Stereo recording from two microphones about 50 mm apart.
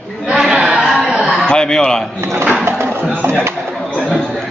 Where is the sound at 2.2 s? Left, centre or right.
Right.